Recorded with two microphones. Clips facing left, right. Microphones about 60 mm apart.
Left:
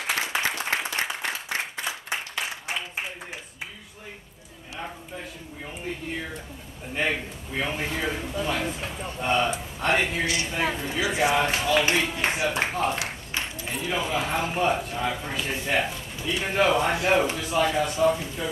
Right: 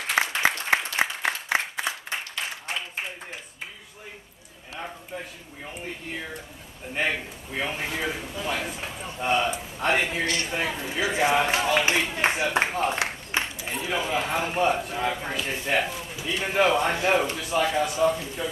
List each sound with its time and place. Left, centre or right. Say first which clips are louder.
0.2 s applause: right 3 dB; centre
2.0 s applause: left 1 dB; centre
4.7 s speech: right 1 dB; centre
11.3 s a man's voice: even; centre
11.9 s speech: right 1 dB; centre